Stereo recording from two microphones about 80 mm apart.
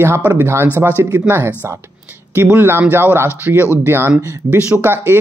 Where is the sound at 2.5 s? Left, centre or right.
Right.